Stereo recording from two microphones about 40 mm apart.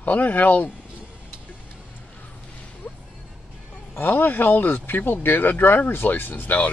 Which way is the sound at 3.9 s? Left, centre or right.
Left.